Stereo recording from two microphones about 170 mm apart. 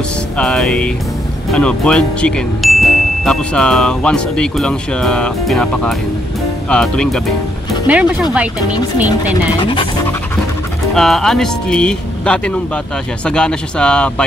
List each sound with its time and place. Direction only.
0.4 s speech: 5° left (ahead or behind)
7.8 s speech: 10° right (ahead or behind)
9.6 s speech: 30° left (ahead or behind)
11.0 s speech: centre (ahead or behind)